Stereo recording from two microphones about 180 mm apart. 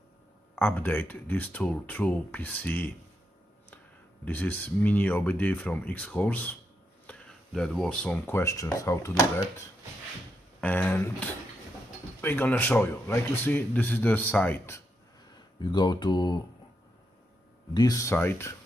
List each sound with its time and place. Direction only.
0.6 s speech: 10° left (ahead or behind)
10.6 s speech: 10° left (ahead or behind)
15.6 s speech: 25° left (ahead or behind)
17.7 s speech: 20° left (ahead or behind)